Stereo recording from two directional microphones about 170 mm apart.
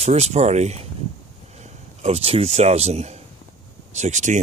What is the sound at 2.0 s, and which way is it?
Speech, 35° right (ahead or behind).